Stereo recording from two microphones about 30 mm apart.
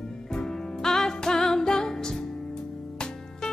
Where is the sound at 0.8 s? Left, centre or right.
Centre.